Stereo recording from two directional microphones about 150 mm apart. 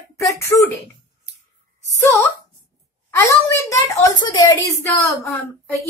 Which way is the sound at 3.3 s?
20° left (ahead or behind).